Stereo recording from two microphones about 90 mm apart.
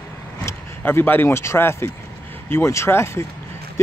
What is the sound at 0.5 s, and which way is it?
A man's voice, 25° left (ahead or behind).